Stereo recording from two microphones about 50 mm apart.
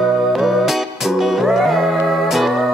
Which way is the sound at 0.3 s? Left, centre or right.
Centre.